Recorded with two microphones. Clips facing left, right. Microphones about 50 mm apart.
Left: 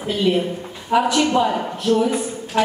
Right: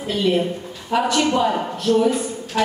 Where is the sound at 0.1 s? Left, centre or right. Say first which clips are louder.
Even; centre.